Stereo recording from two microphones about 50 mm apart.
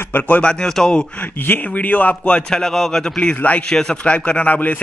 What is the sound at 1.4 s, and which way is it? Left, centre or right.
Speech, left.